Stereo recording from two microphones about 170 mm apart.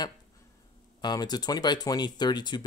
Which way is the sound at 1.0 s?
25° left (ahead or behind).